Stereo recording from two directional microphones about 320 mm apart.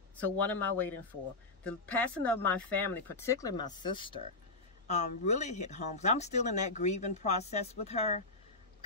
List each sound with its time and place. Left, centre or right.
0.2 s speech: centre